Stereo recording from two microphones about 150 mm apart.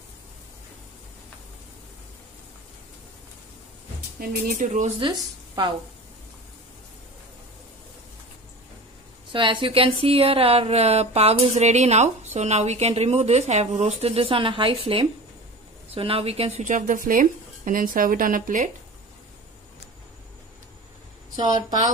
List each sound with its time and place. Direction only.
4.2 s speech: 65° right (ahead or behind)
5.6 s speech: 30° right (ahead or behind)
9.3 s speech: 35° right (ahead or behind); by 18.7 s 60° right (ahead or behind)
21.4 s speech: 30° right (ahead or behind)